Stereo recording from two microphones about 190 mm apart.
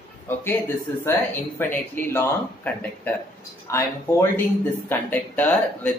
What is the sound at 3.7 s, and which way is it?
Speech, 15° left (ahead or behind).